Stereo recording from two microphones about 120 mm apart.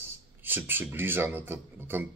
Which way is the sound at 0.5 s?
15° right (ahead or behind).